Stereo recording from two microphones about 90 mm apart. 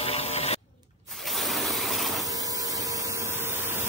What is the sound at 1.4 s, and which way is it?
Mechanisms, centre (ahead or behind).